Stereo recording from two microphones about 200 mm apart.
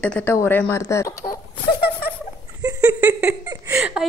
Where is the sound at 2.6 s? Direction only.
15° right (ahead or behind).